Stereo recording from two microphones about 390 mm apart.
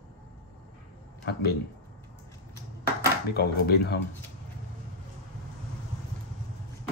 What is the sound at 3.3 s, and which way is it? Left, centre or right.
Speech, left.